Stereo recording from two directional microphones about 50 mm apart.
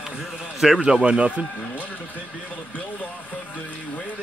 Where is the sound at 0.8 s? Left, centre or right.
Centre.